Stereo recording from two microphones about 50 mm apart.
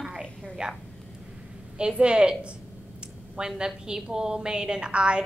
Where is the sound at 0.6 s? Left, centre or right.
Centre.